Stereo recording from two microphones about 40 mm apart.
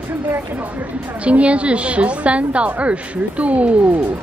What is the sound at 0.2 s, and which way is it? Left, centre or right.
Speech, right.